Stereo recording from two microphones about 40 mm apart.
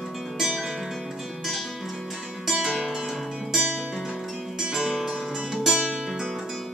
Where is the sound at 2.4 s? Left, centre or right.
Centre.